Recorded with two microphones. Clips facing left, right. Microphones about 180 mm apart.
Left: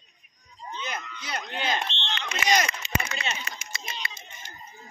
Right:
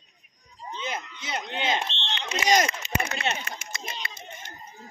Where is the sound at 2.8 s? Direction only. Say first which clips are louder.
Right 3 dB; 55° right (ahead or behind).